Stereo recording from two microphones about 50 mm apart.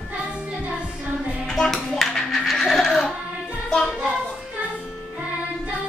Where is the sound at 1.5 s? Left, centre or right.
Centre.